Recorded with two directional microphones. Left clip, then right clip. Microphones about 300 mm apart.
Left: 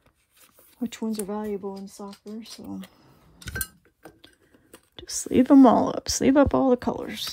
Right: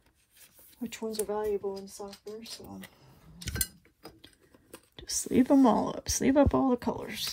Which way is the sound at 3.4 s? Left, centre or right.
Centre.